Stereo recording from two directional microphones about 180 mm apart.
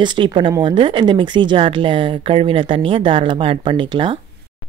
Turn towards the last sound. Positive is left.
turn(degrees=-25)  # may be behind; listen again after turning